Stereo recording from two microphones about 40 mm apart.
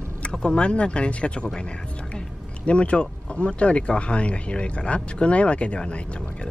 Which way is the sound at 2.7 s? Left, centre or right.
Left.